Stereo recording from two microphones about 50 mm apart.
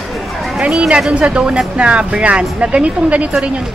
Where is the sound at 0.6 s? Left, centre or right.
Centre.